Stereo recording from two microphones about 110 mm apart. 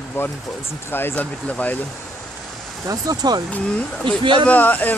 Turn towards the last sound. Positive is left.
turn(degrees=15)  # may be behind; listen again after turning